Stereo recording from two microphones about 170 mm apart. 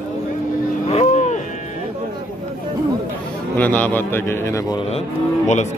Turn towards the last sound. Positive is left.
turn(degrees=45)  # may be behind; listen again after turning